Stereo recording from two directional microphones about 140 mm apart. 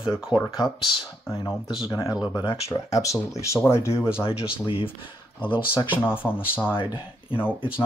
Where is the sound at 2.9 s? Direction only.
25° left (ahead or behind).